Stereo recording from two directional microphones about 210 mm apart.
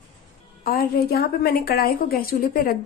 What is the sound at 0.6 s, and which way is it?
A woman's voice, 45° left (ahead or behind).